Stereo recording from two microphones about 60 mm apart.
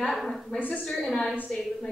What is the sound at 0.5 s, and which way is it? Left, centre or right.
Speech, left.